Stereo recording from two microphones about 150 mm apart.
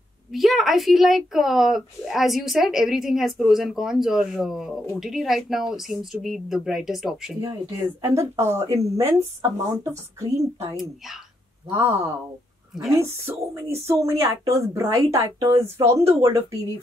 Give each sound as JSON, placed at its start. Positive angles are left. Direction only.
{"t": 0.3, "sound": "speech", "side_deg": 0}
{"t": 7.4, "sound": "speech", "side_deg": -20}
{"t": 11.7, "sound": "speech", "side_deg": -20}